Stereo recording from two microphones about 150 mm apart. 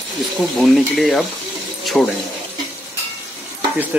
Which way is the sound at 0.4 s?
Centre (ahead or behind).